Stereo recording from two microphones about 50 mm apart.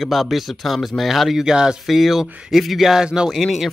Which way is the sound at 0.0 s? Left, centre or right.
Centre.